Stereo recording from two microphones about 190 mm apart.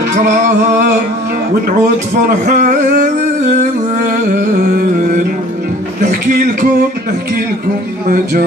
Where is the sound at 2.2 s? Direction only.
45° right (ahead or behind).